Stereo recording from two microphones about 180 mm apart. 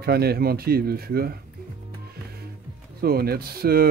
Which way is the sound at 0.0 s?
60° right (ahead or behind).